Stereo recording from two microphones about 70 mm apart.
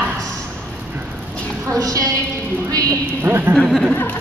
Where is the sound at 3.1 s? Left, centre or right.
Right.